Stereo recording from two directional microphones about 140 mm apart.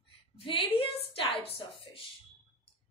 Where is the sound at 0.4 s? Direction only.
40° left (ahead or behind).